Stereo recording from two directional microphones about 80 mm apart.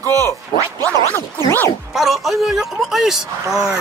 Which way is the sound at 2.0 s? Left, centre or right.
Centre.